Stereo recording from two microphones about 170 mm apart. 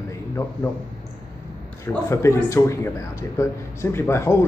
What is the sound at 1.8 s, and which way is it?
A man's voice, 15° left (ahead or behind).